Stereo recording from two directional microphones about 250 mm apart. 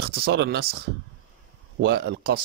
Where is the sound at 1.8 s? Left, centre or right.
Right.